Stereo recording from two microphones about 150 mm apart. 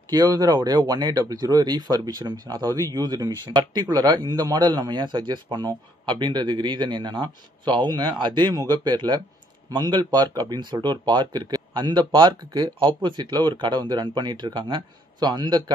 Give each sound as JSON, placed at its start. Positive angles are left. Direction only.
{"t": 0.1, "sound": "speech", "side_deg": -25}